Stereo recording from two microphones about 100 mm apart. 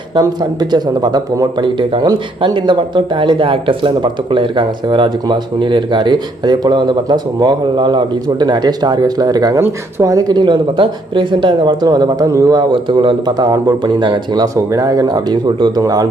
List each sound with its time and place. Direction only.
0.1 s speech: 45° right (ahead or behind)
1.6 s speech: 50° right (ahead or behind)
9.6 s speech: 25° right (ahead or behind)
12.7 s speech: 55° right (ahead or behind)
13.5 s speech: 45° right (ahead or behind)